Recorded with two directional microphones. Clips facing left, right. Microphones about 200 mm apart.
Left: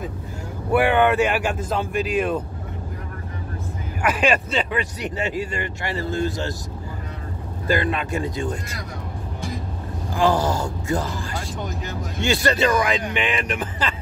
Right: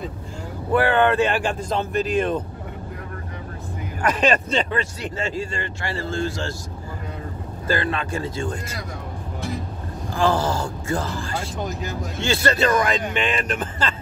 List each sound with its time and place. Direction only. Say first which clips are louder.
0.7 s speech: left 1 dB; 15° left (ahead or behind)
4.0 s speech: even; 10° left (ahead or behind)
7.6 s speech: left 2 dB; 15° left (ahead or behind)
10.1 s speech: left 1 dB; 15° left (ahead or behind)